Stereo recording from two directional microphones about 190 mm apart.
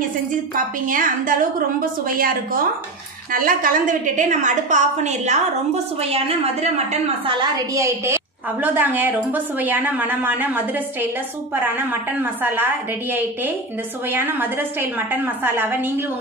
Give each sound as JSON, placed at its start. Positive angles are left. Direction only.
{"t": 0.8, "sound": "a woman's voice", "side_deg": -45}
{"t": 7.3, "sound": "a woman's voice", "side_deg": -15}
{"t": 14.0, "sound": "a woman's voice", "side_deg": -10}